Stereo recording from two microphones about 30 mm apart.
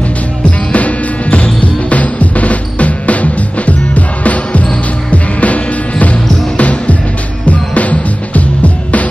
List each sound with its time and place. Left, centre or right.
0.4 s music: left